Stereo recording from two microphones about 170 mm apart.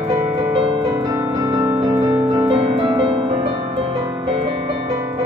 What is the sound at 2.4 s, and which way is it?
Music, 35° right (ahead or behind).